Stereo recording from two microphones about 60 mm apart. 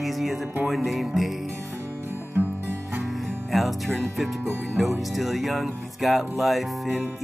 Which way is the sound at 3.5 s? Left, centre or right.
Centre.